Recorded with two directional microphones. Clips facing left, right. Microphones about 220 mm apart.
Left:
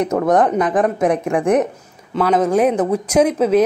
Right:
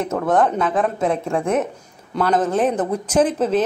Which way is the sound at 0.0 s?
15° left (ahead or behind).